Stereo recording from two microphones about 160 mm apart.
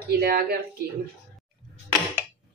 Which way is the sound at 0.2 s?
75° right (ahead or behind).